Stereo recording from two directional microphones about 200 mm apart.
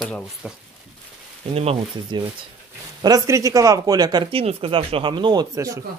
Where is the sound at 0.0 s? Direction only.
Centre (ahead or behind).